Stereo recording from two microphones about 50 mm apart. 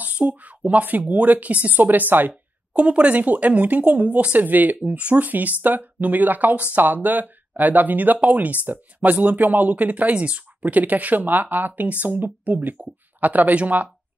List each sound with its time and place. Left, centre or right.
0.0 s speech: right
2.8 s speech: right